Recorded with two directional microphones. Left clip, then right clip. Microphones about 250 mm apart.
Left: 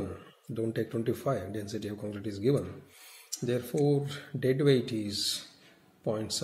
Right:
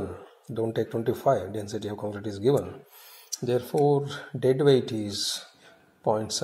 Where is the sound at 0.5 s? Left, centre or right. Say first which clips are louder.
Right 5 dB; centre.